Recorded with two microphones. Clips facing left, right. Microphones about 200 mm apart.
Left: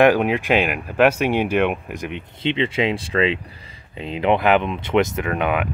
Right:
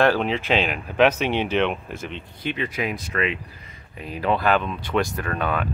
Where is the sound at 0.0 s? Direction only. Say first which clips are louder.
Left 4 dB; 15° left (ahead or behind).